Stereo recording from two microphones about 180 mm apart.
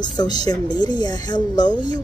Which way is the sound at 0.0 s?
25° left (ahead or behind).